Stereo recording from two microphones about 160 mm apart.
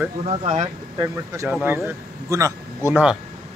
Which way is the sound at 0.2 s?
40° right (ahead or behind).